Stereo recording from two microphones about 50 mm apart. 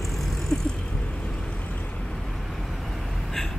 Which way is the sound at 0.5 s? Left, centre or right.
Centre.